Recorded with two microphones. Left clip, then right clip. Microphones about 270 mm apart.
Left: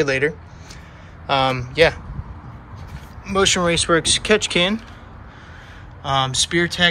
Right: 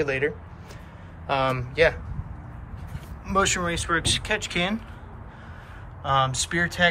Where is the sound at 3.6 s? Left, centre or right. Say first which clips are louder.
Left 8 dB; centre.